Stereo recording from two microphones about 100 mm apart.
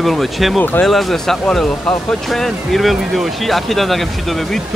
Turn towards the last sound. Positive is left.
turn(degrees=5)  # may be behind; listen again after turning